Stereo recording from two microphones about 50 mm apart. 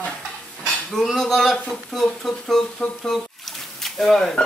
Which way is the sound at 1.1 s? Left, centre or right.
Centre.